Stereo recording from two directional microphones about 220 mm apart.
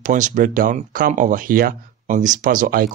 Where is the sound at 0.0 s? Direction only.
35° right (ahead or behind).